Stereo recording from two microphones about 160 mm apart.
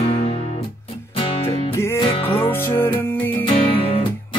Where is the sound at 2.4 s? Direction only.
15° left (ahead or behind).